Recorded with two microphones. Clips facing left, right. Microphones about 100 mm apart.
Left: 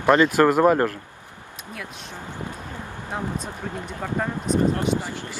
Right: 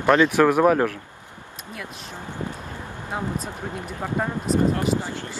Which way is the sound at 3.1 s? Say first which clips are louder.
Right 1 dB; centre (ahead or behind).